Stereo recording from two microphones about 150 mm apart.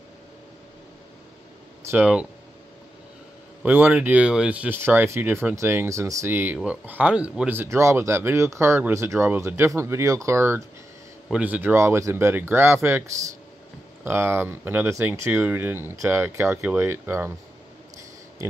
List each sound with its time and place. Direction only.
1.9 s speech: 10° right (ahead or behind)
3.6 s speech: 10° right (ahead or behind)